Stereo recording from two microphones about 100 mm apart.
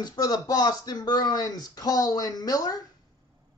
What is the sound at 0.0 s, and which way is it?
Speech, 40° left (ahead or behind).